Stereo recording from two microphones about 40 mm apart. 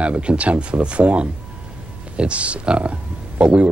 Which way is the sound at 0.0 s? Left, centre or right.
Right.